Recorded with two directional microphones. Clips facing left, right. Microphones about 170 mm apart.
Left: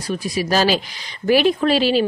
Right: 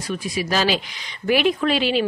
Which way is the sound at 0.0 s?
35° left (ahead or behind).